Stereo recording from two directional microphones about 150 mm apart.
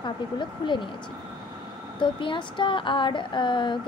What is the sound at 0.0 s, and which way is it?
Speech, 30° left (ahead or behind).